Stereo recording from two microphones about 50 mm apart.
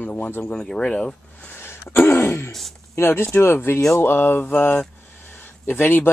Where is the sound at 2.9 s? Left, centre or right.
Left.